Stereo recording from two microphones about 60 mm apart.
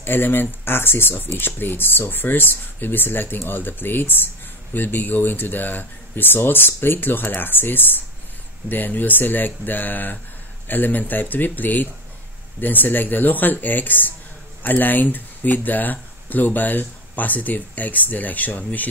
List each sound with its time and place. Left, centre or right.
0.0 s speech: left